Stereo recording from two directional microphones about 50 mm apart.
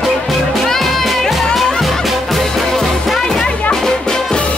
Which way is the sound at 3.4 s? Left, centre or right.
Left.